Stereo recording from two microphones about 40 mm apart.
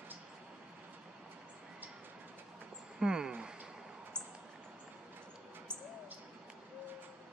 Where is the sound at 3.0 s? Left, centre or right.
Centre.